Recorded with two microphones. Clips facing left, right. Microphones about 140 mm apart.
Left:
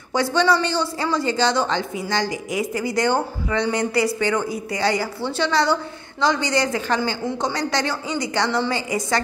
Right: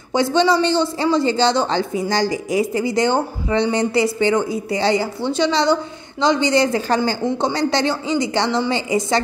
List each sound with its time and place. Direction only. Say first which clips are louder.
0.1 s speech: right 3 dB; 20° right (ahead or behind)